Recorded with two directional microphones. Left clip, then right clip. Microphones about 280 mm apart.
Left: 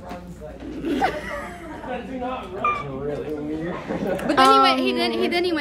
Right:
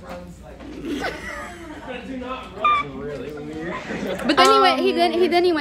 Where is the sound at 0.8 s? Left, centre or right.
Centre.